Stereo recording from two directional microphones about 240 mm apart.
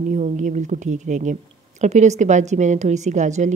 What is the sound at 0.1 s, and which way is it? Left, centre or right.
A woman's voice, right.